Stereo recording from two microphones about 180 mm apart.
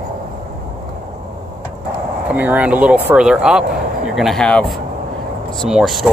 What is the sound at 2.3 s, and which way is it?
Speech, 10° right (ahead or behind).